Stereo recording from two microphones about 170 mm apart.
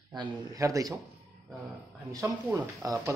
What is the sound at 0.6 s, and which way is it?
Speech, 20° right (ahead or behind).